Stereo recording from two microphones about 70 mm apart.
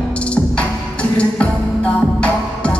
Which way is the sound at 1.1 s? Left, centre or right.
Centre.